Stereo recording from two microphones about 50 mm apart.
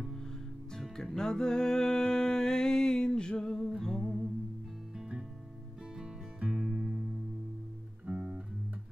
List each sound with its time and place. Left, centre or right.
0.7 s music: centre
6.6 s music: centre
8.1 s music: right